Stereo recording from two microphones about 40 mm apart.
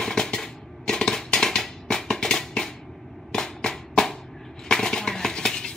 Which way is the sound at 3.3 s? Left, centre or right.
Centre.